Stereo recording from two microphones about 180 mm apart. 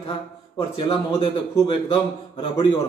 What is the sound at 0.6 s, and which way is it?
Speech, 30° left (ahead or behind).